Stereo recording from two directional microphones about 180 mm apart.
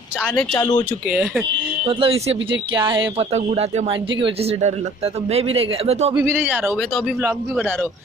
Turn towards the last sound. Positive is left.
turn(degrees=-10)  # may be behind; listen again after turning